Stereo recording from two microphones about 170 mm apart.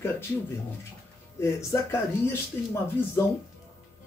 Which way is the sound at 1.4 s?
15° left (ahead or behind).